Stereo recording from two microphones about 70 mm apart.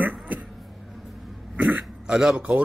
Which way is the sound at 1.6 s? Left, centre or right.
Centre.